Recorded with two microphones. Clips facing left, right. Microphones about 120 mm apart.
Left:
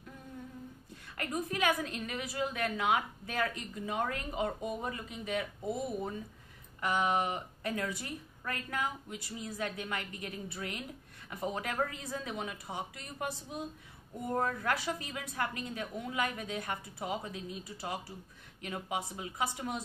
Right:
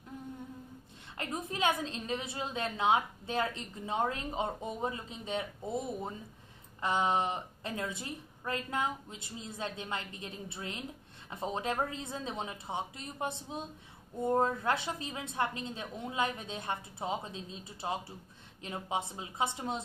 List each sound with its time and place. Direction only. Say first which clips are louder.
1.1 s a woman's voice: left 2 dB; 25° right (ahead or behind)
6.8 s a woman's voice: right 1 dB; 25° right (ahead or behind)